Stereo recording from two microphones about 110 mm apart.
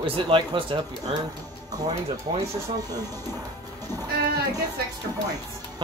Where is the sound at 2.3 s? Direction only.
45° right (ahead or behind).